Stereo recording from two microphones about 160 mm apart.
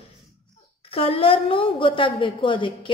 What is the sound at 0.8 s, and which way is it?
A woman's voice, 35° left (ahead or behind).